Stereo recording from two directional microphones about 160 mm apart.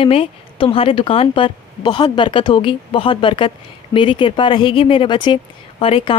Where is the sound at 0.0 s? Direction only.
35° left (ahead or behind).